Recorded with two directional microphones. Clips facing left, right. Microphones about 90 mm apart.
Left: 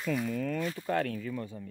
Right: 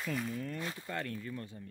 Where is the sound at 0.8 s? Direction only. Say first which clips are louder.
Left 11 dB; 90° left.